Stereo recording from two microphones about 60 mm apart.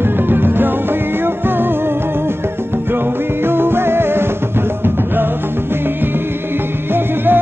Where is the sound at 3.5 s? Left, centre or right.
Right.